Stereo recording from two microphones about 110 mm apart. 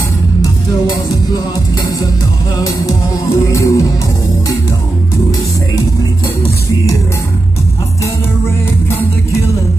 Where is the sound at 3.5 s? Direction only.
25° left (ahead or behind).